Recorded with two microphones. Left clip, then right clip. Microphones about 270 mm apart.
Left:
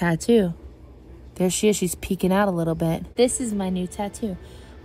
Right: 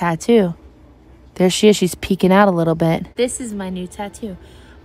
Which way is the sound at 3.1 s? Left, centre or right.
Centre.